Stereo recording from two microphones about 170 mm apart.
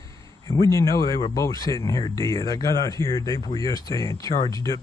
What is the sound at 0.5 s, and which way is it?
Speech, 15° left (ahead or behind).